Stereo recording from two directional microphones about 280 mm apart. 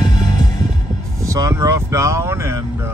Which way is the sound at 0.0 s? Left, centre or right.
Centre.